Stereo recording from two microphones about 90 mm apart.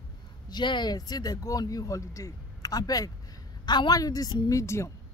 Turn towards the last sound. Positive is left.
turn(degrees=30)  # may be behind; listen again after turning